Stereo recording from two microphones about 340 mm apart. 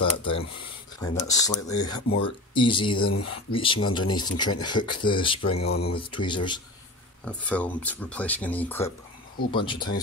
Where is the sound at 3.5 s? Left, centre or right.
Centre.